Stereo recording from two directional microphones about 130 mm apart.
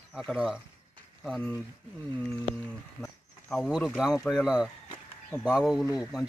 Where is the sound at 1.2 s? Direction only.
5° left (ahead or behind).